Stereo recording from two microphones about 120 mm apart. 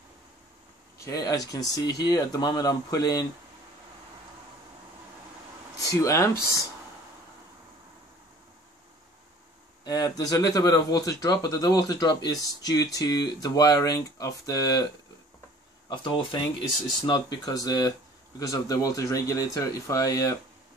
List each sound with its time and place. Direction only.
0.9 s speech: 30° left (ahead or behind)
5.8 s speech: 30° left (ahead or behind)
9.8 s speech: 30° left (ahead or behind)
15.9 s speech: 45° left (ahead or behind)